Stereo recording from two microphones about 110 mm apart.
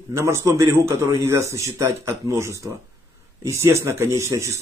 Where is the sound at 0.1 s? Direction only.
25° right (ahead or behind).